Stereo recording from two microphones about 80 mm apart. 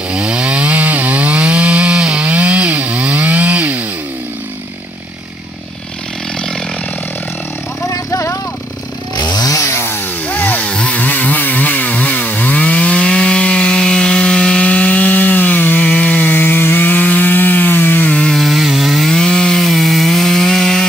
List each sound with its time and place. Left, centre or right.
0.1 s chainsaw: centre
7.8 s vehicle: left
9.1 s chainsaw: left
10.2 s chainsaw: left
18.3 s wood: centre